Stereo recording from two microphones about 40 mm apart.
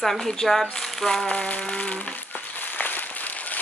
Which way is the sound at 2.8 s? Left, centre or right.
Left.